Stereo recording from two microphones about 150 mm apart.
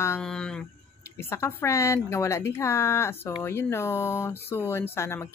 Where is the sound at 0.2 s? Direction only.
5° left (ahead or behind).